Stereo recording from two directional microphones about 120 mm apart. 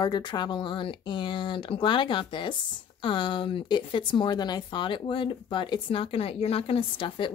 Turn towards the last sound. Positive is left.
turn(degrees=45)  # may be behind; listen again after turning